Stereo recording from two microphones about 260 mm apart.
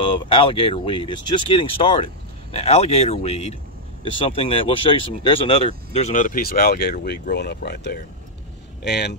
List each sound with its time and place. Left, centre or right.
0.0 s speech: centre; by 9.1 s left